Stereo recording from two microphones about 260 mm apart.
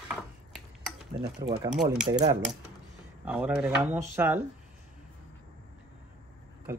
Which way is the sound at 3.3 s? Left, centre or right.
Centre.